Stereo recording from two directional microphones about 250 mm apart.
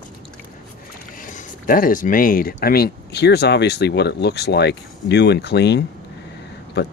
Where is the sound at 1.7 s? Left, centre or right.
Left.